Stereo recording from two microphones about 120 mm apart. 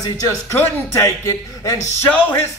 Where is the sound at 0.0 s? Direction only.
25° left (ahead or behind).